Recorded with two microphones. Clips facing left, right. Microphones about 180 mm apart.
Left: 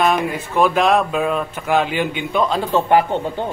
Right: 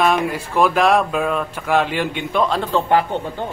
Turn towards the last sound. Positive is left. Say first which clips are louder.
# left 2 dB
turn(degrees=15)  # may be behind; listen again after turning